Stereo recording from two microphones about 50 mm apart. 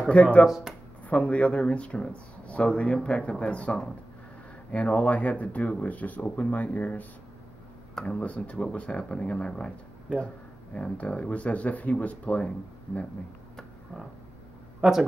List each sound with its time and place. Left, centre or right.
0.1 s speech: left
14.8 s speech: centre